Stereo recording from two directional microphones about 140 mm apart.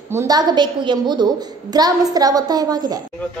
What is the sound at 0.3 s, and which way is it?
A child's voice, 30° right (ahead or behind).